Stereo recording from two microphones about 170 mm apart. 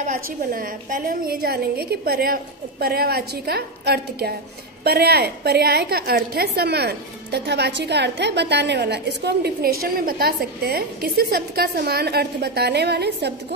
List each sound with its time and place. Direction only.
0.0 s a woman's voice: 55° right (ahead or behind); by 13.3 s 75° right (ahead or behind)